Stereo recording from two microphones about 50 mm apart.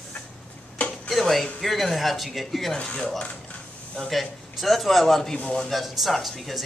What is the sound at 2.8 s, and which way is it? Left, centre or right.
Speech, left.